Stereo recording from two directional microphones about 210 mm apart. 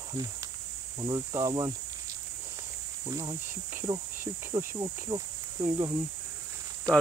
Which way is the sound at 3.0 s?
15° right (ahead or behind).